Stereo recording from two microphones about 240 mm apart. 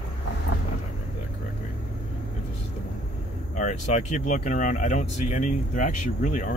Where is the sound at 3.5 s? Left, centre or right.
Left.